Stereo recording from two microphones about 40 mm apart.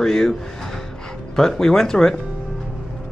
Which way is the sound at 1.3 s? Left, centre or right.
Centre.